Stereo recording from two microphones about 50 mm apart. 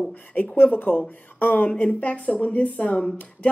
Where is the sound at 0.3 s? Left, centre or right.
Left.